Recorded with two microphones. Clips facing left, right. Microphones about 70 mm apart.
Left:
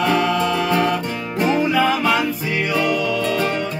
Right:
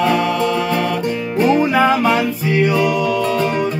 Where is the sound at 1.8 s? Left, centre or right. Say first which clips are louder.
Right 4 dB; right.